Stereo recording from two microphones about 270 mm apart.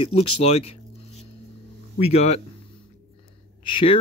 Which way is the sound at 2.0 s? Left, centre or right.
Left.